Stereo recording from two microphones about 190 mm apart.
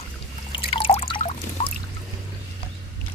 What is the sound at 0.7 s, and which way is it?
Water, 30° left (ahead or behind).